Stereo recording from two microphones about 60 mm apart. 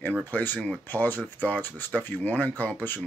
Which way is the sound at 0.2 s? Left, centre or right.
Left.